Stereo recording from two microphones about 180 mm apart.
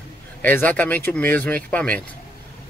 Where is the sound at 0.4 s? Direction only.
10° left (ahead or behind).